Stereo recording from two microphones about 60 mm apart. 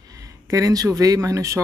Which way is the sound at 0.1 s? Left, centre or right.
Right.